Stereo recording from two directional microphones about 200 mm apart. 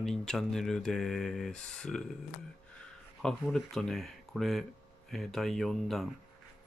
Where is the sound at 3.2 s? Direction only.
Centre (ahead or behind).